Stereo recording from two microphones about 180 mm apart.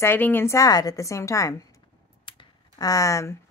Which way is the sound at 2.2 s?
25° left (ahead or behind).